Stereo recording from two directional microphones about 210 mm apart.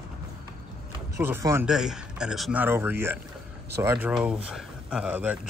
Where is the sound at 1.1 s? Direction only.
15° right (ahead or behind).